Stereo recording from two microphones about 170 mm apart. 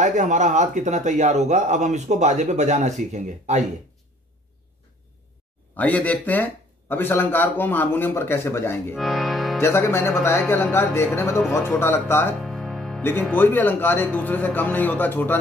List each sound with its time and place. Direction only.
0.0 s a man's voice: 45° right (ahead or behind)
5.8 s speech: 10° left (ahead or behind)
8.9 s music: centre (ahead or behind)
9.6 s speech: 15° left (ahead or behind)
12.4 s music: centre (ahead or behind)
13.0 s speech: 10° left (ahead or behind)